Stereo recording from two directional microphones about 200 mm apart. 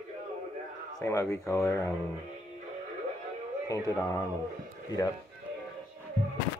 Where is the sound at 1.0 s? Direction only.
15° left (ahead or behind).